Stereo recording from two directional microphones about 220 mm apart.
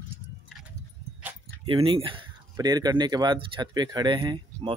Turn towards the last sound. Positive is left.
turn(degrees=-20)  # may be behind; listen again after turning